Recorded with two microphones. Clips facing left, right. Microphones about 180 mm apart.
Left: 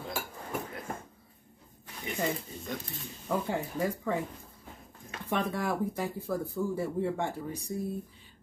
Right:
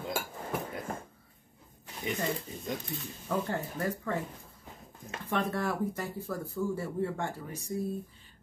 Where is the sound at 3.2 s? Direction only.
10° left (ahead or behind).